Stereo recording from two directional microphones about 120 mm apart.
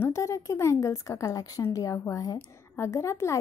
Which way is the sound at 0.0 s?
25° left (ahead or behind).